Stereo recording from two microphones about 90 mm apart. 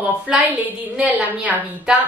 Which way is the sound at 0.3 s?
10° right (ahead or behind).